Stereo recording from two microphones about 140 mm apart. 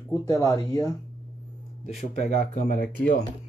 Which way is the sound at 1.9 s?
55° left (ahead or behind).